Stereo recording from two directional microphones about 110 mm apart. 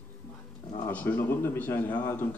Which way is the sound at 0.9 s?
15° left (ahead or behind).